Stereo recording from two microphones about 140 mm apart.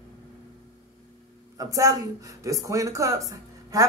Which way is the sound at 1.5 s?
25° right (ahead or behind).